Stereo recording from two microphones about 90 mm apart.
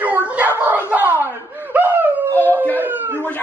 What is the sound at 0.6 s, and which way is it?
Snicker, 20° right (ahead or behind).